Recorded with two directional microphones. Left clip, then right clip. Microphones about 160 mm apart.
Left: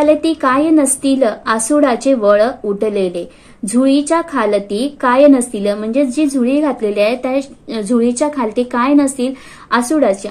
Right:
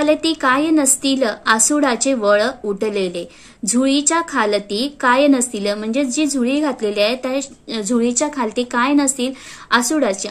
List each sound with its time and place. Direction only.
0.0 s a woman's voice: 25° right (ahead or behind)